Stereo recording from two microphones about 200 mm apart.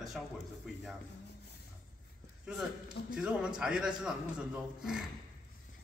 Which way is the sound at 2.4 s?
5° right (ahead or behind).